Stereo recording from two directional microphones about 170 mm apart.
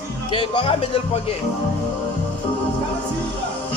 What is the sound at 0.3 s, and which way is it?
Speech, 30° left (ahead or behind).